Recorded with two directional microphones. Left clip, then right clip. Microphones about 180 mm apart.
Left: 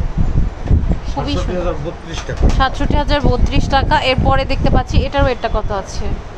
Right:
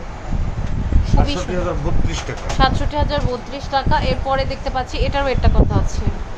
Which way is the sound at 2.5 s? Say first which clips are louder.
Even; 15° left (ahead or behind).